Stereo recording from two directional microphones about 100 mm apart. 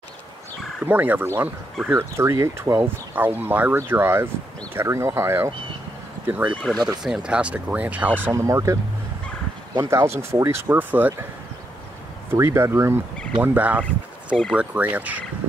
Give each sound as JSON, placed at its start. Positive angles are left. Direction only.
{"t": 0.8, "sound": "speech", "side_deg": -20}
{"t": 6.2, "sound": "speech", "side_deg": -15}
{"t": 6.6, "sound": "speech", "side_deg": 5}
{"t": 7.0, "sound": "speech", "side_deg": -5}
{"t": 8.3, "sound": "speech", "side_deg": -30}
{"t": 9.8, "sound": "speech", "side_deg": -30}
{"t": 12.3, "sound": "speech", "side_deg": -30}
{"t": 13.4, "sound": "speech", "side_deg": -15}